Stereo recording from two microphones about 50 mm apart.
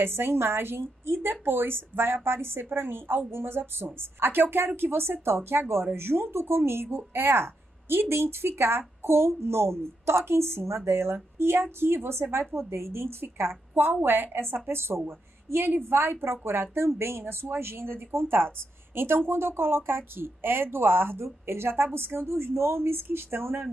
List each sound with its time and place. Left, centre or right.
0.0 s a woman's voice: right